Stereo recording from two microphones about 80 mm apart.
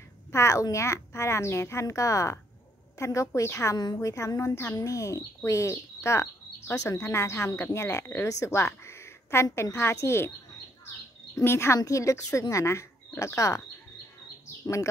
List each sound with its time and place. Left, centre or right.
0.3 s speech: left
3.7 s a woman's voice: left
4.0 s a woman's voice: left
11.4 s speech: left